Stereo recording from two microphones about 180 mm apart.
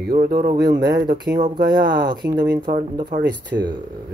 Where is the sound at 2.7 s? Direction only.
45° right (ahead or behind).